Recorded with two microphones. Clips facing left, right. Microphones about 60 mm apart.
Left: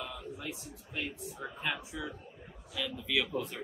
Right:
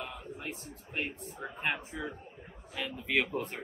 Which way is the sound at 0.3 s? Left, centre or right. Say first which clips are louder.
Even; right.